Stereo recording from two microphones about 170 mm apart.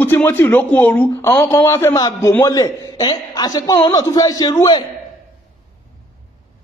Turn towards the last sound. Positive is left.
turn(degrees=25)  # may be behind; listen again after turning